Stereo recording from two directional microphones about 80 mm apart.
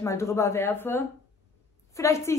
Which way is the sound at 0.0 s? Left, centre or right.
Left.